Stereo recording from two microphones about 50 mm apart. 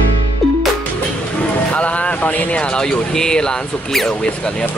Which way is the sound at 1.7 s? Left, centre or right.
Left.